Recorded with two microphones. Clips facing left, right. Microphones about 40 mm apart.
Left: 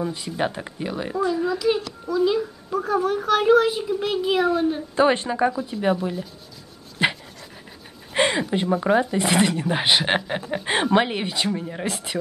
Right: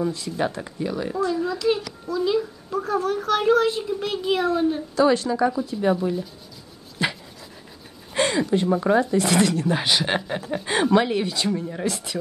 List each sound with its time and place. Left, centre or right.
0.1 s speech: left
1.1 s a child's voice: centre
4.9 s a woman's voice: left
7.0 s dog: left
8.1 s a sound: left
9.0 s speech: centre